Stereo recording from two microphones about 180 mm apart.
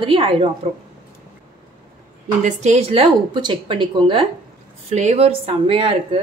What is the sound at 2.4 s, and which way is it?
A woman's voice, 40° right (ahead or behind).